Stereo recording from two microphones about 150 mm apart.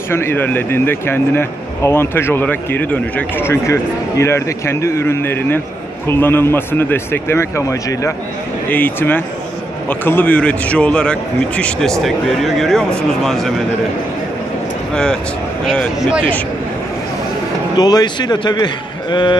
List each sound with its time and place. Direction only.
0.1 s speech: 15° left (ahead or behind)
15.6 s speech: 5° left (ahead or behind)
17.7 s a man's voice: 25° left (ahead or behind)